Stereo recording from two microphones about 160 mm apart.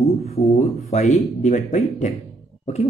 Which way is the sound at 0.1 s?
40° left (ahead or behind).